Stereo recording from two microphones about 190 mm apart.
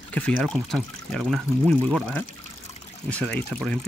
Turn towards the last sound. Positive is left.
turn(degrees=5)  # may be behind; listen again after turning